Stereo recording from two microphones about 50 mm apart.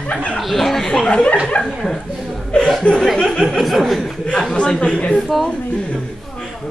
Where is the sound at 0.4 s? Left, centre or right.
Centre.